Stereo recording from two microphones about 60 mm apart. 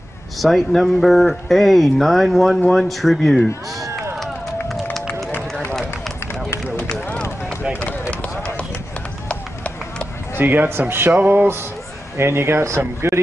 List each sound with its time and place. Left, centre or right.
0.4 s speech: centre
3.8 s chop: right
5.7 s run: centre
8.1 s run: centre
10.3 s a man's voice: right
10.7 s music: right
11.1 s a sound: right
12.2 s speech: right